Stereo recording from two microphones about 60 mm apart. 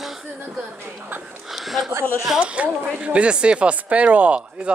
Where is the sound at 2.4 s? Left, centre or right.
Right.